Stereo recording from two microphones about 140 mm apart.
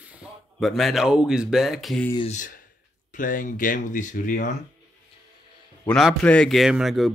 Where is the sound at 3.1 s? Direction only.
70° left (ahead or behind).